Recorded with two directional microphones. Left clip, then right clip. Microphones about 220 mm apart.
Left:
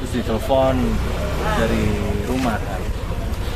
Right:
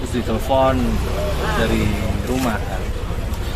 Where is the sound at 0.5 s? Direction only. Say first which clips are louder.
Right 1 dB; centre (ahead or behind).